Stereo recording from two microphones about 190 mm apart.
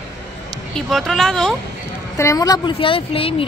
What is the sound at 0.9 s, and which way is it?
Speech, centre (ahead or behind).